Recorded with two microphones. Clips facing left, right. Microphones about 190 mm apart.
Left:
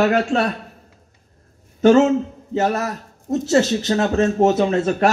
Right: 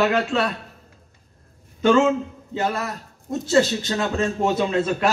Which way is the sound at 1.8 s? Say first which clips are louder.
Left 4 dB; 45° left (ahead or behind).